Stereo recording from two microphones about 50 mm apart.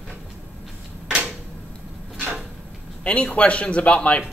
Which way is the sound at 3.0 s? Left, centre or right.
Left.